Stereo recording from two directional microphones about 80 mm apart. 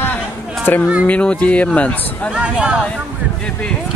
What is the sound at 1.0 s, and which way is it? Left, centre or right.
Speech, centre.